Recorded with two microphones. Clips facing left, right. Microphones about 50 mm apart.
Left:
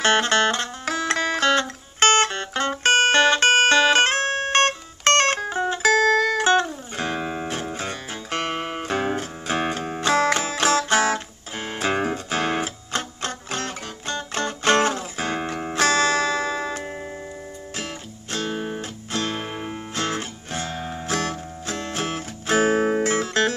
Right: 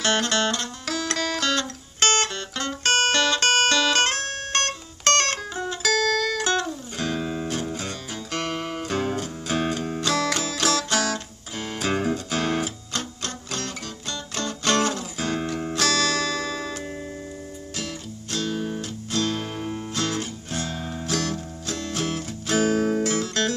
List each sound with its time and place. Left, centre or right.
0.0 s music: left